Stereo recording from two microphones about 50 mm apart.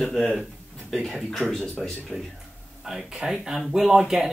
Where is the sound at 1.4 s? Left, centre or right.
Centre.